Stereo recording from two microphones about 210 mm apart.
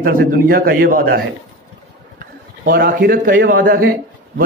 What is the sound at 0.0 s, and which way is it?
A man's voice, 45° right (ahead or behind).